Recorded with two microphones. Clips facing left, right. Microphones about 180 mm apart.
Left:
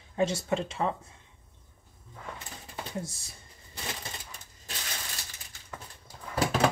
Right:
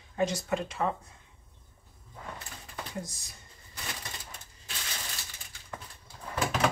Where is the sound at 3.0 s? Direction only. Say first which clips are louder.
Left 4 dB; 30° left (ahead or behind).